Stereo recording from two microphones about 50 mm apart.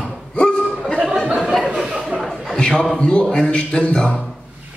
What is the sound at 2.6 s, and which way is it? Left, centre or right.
A man's voice, centre.